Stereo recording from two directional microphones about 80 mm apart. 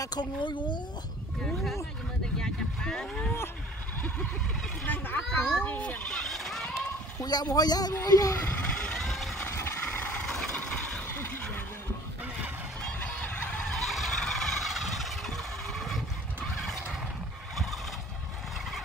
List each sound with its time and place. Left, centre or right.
0.0 s speech: left
2.4 s speech: centre
4.8 s speech: left
6.1 s a sound: centre
7.2 s speech: left
8.9 s vehicle: centre
9.4 s a sound: left
9.9 s vehicle: left
13.0 s fowl: centre
13.7 s vehicle: centre